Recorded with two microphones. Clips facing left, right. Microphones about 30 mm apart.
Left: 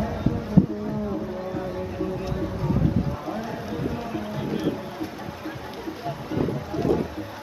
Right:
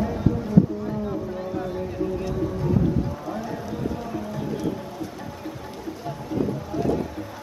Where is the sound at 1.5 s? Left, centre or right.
Centre.